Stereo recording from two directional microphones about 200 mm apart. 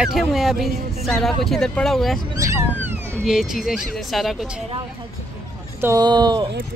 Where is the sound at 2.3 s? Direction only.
15° right (ahead or behind).